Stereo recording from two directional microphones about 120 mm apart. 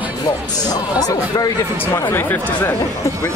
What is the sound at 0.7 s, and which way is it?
Speech, 30° left (ahead or behind).